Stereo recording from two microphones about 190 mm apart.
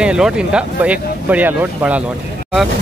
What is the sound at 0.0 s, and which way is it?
Speech, 5° right (ahead or behind).